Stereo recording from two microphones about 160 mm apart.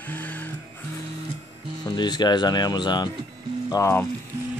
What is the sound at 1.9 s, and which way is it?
Speech, 25° left (ahead or behind).